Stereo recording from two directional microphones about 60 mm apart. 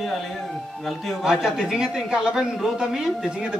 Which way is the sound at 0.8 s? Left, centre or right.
Centre.